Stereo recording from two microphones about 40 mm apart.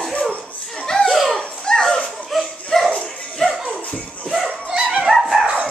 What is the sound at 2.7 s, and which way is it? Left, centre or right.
Music, centre.